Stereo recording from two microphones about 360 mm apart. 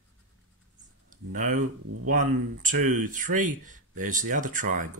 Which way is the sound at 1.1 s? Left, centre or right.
Right.